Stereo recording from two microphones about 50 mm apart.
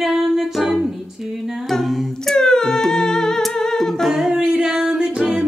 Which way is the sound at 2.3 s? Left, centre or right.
Centre.